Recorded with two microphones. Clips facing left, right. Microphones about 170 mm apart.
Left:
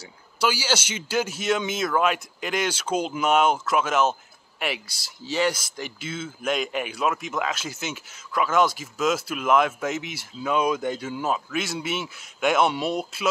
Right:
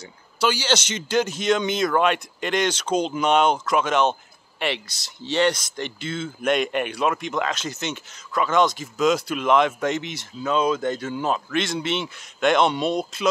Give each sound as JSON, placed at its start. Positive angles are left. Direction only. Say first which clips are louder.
{"t": 0.4, "sound": "speech", "louder": "right 2 dB", "side_deg": 10}